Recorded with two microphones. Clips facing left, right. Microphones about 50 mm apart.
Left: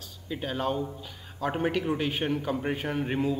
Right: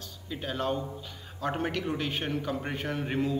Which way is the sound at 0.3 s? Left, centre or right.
Centre.